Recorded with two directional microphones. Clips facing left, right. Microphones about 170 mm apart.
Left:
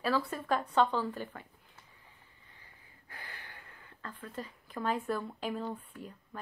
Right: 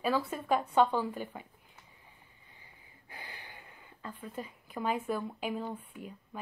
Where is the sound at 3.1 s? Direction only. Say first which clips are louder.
Right 1 dB; 20° right (ahead or behind).